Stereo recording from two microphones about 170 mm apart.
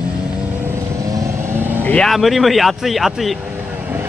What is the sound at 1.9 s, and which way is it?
Speech, 5° left (ahead or behind).